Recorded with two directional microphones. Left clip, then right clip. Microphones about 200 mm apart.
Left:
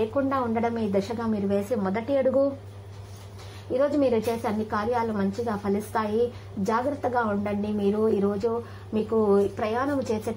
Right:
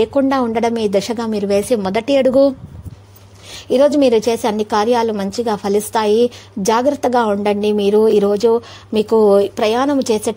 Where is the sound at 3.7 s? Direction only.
45° right (ahead or behind).